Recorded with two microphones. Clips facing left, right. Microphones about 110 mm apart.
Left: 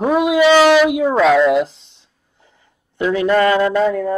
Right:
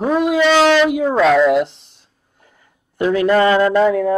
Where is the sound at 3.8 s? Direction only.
60° right (ahead or behind).